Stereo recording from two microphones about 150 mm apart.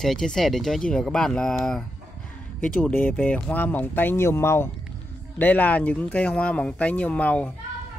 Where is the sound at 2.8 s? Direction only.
15° left (ahead or behind).